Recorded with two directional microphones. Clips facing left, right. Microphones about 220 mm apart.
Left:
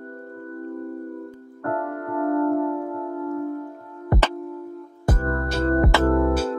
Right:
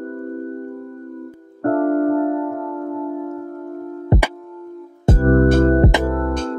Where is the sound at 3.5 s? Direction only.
45° right (ahead or behind).